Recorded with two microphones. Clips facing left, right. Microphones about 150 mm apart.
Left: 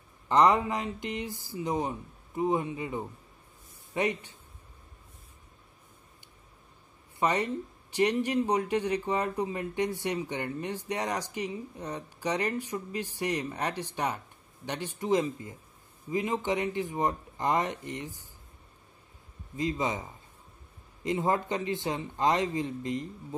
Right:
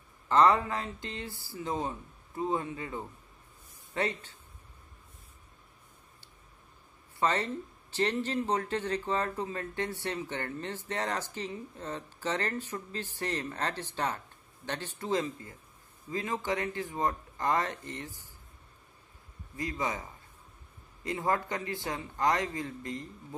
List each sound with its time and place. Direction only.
0.3 s speech: 20° left (ahead or behind)
7.2 s speech: 15° left (ahead or behind)
19.5 s speech: 20° left (ahead or behind)